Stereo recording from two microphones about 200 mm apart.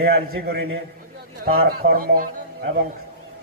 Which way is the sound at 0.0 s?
50° right (ahead or behind).